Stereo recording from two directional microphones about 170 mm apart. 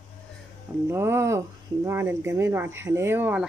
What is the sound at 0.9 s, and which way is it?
Speech, 15° right (ahead or behind).